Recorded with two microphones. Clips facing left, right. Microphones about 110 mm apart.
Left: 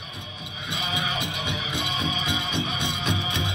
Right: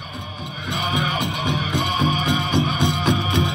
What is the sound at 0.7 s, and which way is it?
Music, 50° right (ahead or behind).